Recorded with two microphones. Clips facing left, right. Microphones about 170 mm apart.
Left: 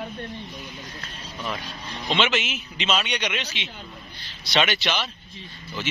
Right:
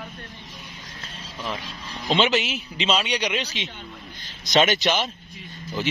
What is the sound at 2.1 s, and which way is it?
A man's voice, 35° right (ahead or behind).